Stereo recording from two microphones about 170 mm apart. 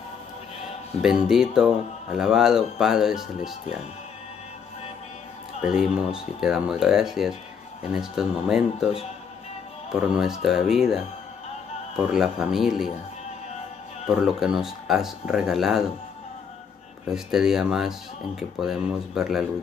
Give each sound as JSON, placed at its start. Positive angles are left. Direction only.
{"t": 1.0, "sound": "speech", "side_deg": -5}
{"t": 5.8, "sound": "speech", "side_deg": -5}
{"t": 9.8, "sound": "speech", "side_deg": -5}
{"t": 12.0, "sound": "speech", "side_deg": -5}
{"t": 14.0, "sound": "speech", "side_deg": 0}
{"t": 17.1, "sound": "speech", "side_deg": -5}